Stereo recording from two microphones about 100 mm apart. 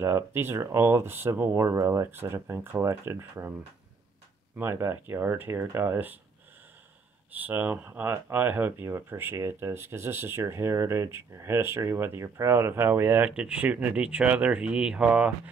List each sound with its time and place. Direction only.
0.0 s speech: 25° right (ahead or behind)
7.3 s speech: 15° right (ahead or behind)
13.3 s speech: 10° right (ahead or behind)